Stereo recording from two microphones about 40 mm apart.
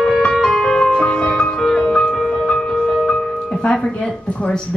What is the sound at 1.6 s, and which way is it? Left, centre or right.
Music, centre.